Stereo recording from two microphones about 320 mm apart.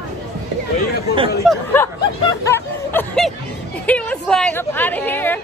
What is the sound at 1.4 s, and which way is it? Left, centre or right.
Speech, centre.